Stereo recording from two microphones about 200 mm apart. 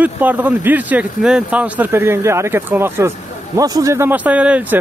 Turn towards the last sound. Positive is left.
turn(degrees=-5)  # may be behind; listen again after turning